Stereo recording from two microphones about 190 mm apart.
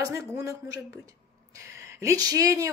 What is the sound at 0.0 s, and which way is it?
A woman's voice, 15° right (ahead or behind).